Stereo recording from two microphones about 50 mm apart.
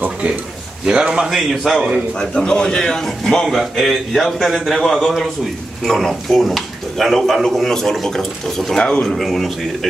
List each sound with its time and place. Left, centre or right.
0.8 s a man's voice: centre
1.3 s speech: centre
2.1 s a man's voice: centre